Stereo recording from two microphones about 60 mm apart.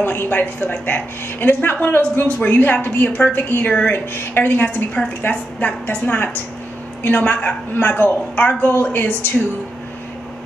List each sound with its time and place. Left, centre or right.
0.0 s a woman's voice: left